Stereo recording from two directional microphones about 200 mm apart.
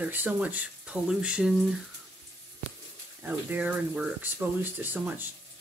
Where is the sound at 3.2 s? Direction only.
10° right (ahead or behind).